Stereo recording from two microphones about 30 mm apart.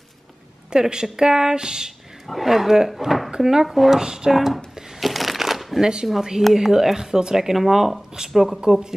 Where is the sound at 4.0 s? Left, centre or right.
Right.